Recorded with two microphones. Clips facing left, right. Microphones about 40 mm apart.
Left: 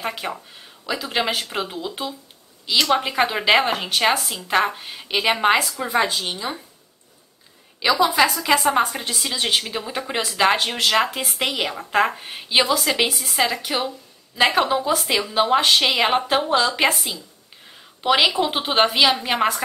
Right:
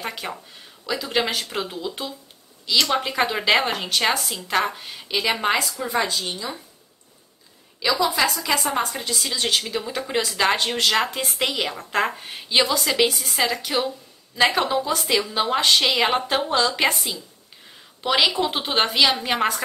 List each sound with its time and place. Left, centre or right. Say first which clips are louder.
0.0 s a woman's voice: left 3 dB; centre; by 6.5 s left
7.8 s a woman's voice: left 3 dB; left; by 19.6 s centre